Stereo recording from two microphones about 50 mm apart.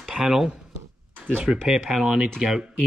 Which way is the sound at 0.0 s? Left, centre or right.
Centre.